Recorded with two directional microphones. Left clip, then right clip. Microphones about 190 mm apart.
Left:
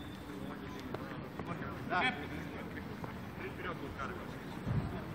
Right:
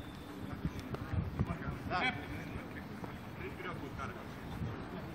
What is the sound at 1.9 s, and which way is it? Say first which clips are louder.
Speech: left 2 dB; 55° right (ahead or behind).